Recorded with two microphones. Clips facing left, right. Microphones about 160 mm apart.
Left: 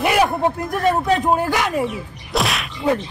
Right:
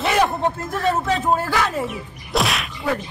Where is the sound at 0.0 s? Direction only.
10° left (ahead or behind).